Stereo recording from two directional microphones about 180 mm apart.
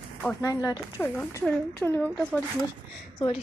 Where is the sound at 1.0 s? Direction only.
10° left (ahead or behind).